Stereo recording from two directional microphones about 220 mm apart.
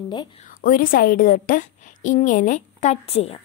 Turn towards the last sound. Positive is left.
turn(degrees=25)  # may be behind; listen again after turning